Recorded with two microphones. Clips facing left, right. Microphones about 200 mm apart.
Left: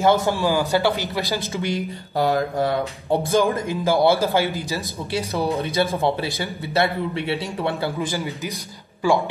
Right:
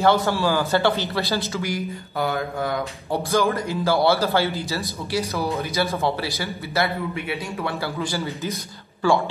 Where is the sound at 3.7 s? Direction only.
15° left (ahead or behind).